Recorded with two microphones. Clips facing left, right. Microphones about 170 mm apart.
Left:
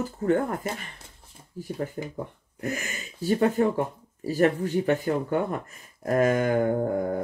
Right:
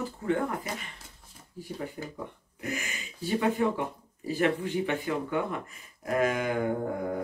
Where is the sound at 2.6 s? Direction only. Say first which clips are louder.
Left 4 dB; 40° left (ahead or behind).